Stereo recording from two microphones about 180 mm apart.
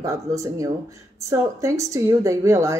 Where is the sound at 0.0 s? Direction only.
20° right (ahead or behind).